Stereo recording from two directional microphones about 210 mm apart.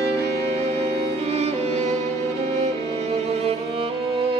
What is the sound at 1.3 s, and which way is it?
Music, 30° right (ahead or behind).